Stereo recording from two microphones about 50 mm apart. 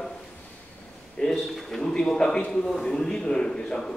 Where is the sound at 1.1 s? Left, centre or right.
Centre.